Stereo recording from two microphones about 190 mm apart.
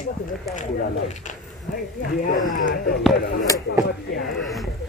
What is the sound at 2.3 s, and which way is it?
Speech, 45° left (ahead or behind).